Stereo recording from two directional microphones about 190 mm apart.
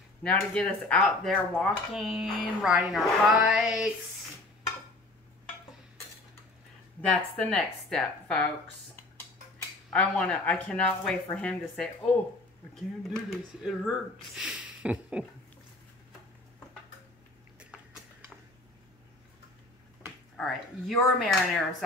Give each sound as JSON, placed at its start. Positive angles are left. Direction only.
{"t": 0.2, "sound": "speech", "side_deg": 5}
{"t": 7.0, "sound": "speech", "side_deg": 5}
{"t": 9.9, "sound": "speech", "side_deg": 5}
{"t": 20.3, "sound": "speech", "side_deg": 0}